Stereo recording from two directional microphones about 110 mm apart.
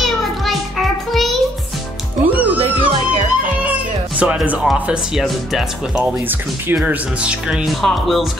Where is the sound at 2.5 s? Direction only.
50° right (ahead or behind).